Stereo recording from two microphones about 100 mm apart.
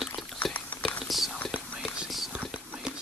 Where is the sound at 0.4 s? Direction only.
15° left (ahead or behind).